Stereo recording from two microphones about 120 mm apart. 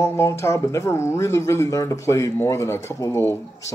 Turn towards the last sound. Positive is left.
turn(degrees=20)  # may be behind; listen again after turning